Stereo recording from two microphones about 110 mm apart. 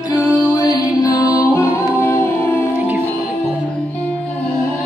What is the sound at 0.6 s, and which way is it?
Music, 35° left (ahead or behind).